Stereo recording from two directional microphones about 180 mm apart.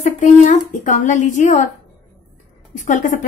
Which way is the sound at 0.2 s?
40° left (ahead or behind).